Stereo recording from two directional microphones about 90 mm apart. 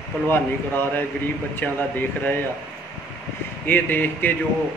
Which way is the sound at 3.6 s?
20° left (ahead or behind).